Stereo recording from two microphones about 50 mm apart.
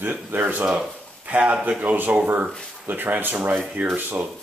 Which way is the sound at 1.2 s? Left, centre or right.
Right.